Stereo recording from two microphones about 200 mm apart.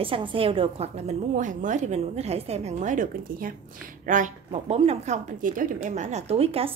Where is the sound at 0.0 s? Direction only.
25° right (ahead or behind).